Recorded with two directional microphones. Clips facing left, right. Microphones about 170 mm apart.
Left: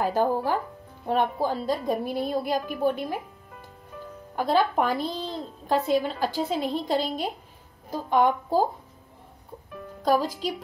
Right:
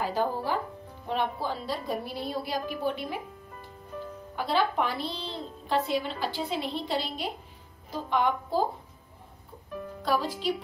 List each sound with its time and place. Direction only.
0.0 s a woman's voice: 50° left (ahead or behind)
4.4 s a woman's voice: 45° left (ahead or behind)
10.0 s a woman's voice: 45° left (ahead or behind)